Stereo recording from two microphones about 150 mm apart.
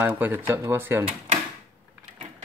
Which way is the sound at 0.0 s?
10° right (ahead or behind).